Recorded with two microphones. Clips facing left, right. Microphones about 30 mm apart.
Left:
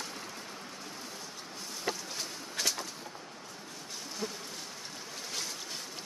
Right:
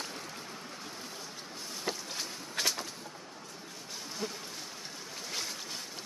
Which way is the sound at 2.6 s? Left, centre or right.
Right.